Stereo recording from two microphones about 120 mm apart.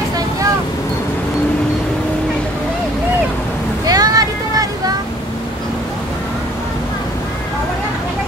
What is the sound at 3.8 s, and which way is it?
Vehicle, 30° right (ahead or behind).